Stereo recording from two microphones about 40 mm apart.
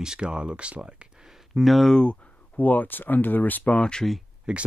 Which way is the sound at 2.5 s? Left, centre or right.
Left.